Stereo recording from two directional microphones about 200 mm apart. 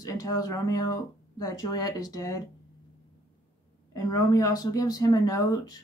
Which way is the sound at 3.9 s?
20° left (ahead or behind).